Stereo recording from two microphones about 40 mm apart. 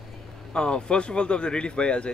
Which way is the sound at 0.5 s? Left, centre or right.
Left.